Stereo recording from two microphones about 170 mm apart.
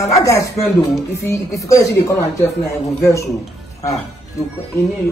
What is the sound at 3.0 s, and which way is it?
Speech, 15° left (ahead or behind).